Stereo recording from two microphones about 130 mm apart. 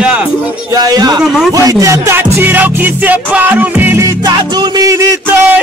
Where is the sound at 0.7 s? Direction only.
30° right (ahead or behind).